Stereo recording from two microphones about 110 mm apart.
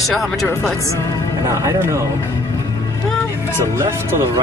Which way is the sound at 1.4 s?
25° right (ahead or behind).